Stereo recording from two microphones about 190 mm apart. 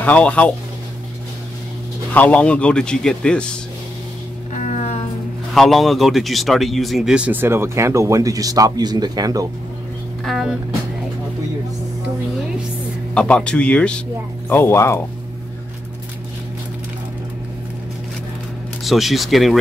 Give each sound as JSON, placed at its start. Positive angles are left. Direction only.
{"t": 0.0, "sound": "speech", "side_deg": 5}
{"t": 2.1, "sound": "a man's voice", "side_deg": 10}
{"t": 4.6, "sound": "music", "side_deg": 40}
{"t": 5.5, "sound": "speech", "side_deg": 0}
{"t": 10.2, "sound": "speech", "side_deg": 0}
{"t": 13.1, "sound": "a man's voice", "side_deg": 5}
{"t": 18.9, "sound": "a man's voice", "side_deg": 0}